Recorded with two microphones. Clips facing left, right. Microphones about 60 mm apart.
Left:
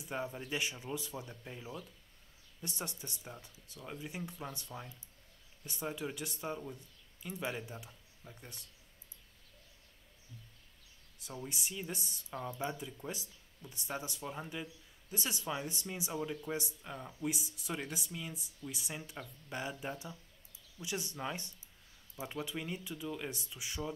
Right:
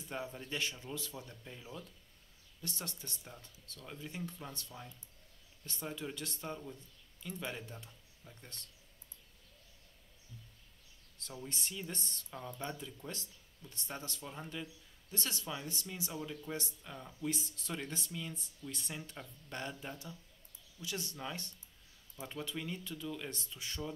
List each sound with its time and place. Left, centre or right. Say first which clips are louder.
0.0 s speech: left 3 dB; centre
2.6 s speech: left 2 dB; centre
11.4 s speech: left 1 dB; centre